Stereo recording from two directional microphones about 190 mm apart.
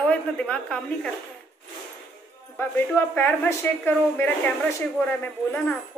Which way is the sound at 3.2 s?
10° left (ahead or behind).